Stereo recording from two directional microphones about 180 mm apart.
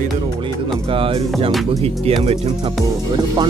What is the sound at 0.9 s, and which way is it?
Speech, 30° right (ahead or behind).